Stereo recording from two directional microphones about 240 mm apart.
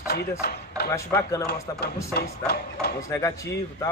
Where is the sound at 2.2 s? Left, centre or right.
Left.